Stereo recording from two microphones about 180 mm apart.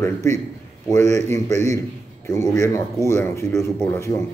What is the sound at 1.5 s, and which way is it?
Speech, 40° right (ahead or behind).